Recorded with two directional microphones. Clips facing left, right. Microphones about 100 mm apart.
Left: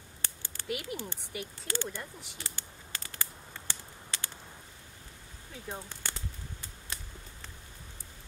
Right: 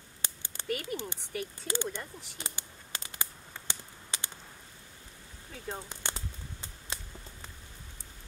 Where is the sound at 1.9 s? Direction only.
20° right (ahead or behind).